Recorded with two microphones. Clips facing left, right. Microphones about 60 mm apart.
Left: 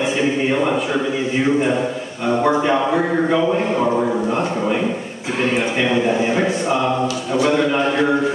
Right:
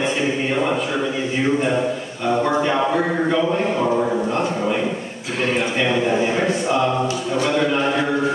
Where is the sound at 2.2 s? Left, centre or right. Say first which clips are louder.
Left 2 dB; centre.